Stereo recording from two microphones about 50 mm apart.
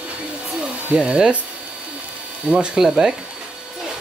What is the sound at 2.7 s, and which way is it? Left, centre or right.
Speech, centre.